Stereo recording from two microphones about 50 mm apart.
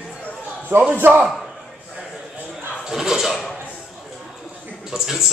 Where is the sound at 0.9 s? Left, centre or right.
Right.